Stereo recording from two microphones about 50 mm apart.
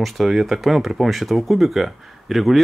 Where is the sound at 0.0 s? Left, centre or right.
Centre.